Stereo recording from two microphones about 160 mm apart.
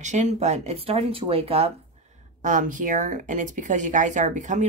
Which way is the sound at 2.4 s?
55° right (ahead or behind).